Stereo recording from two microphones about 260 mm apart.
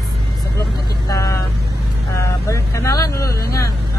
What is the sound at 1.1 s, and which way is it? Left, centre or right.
Speech, centre.